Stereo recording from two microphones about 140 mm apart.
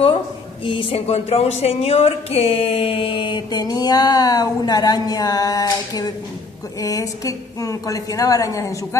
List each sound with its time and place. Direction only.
0.7 s a woman's voice: 40° left (ahead or behind); by 8.7 s 25° left (ahead or behind)